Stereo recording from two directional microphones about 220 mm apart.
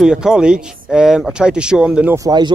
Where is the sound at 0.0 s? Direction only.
5° right (ahead or behind).